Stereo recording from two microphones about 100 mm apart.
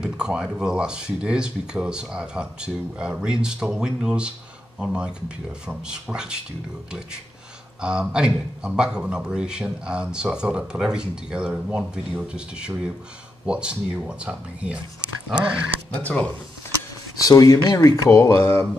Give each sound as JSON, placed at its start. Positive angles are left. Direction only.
{"t": 0.0, "sound": "a man's voice", "side_deg": -10}
{"t": 7.8, "sound": "a man's voice", "side_deg": -10}
{"t": 15.9, "sound": "speech", "side_deg": 15}
{"t": 17.2, "sound": "speech", "side_deg": 35}